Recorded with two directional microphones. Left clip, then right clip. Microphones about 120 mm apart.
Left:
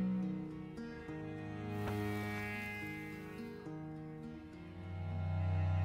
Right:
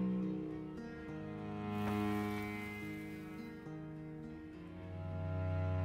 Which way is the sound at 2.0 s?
30° right (ahead or behind).